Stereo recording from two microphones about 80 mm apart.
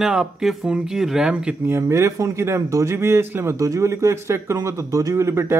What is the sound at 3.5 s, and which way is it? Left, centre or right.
Speech, right.